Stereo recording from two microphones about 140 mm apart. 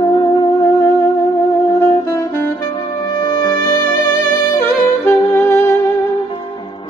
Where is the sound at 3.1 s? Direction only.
30° left (ahead or behind).